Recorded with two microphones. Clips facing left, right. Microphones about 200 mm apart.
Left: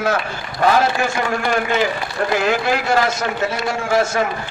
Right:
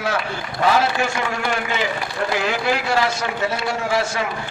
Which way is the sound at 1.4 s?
45° left (ahead or behind).